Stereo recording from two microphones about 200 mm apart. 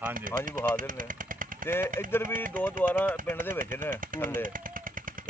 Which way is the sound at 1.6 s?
45° right (ahead or behind).